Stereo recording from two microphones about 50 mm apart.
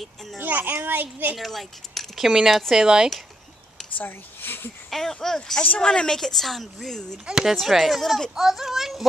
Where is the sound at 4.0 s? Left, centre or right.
Left.